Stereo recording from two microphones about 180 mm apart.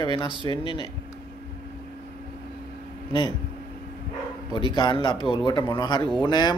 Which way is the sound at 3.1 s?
25° left (ahead or behind).